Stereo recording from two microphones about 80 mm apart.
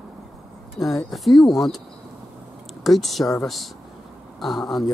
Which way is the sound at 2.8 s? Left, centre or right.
Centre.